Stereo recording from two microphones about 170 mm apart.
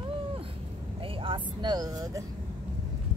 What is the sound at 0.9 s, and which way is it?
Speech, 30° right (ahead or behind).